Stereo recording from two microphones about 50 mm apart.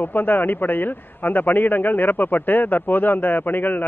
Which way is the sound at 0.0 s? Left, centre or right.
Left.